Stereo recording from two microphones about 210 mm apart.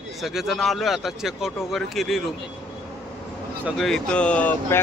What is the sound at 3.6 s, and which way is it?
A man's voice, centre (ahead or behind).